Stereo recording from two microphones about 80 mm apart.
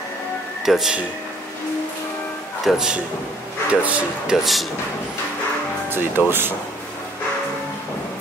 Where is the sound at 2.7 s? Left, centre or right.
Centre.